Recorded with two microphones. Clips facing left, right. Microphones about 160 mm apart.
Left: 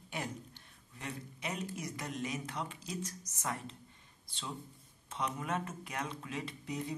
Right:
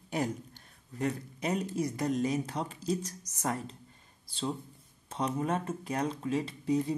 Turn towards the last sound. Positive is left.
turn(degrees=-35)  # may be behind; listen again after turning